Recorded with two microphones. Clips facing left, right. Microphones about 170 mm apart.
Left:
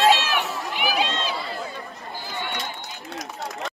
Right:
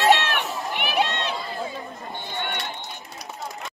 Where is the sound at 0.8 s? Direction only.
60° right (ahead or behind).